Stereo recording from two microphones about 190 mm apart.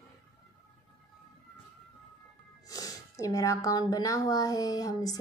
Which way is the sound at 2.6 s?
20° left (ahead or behind).